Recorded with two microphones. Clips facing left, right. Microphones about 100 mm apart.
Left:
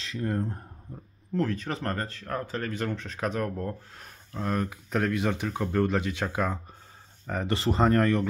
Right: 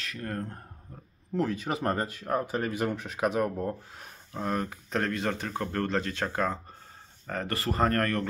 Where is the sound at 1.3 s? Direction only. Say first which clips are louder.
Even; 5° right (ahead or behind).